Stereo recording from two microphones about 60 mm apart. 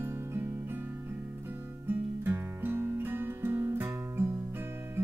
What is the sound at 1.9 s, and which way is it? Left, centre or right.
Music, right.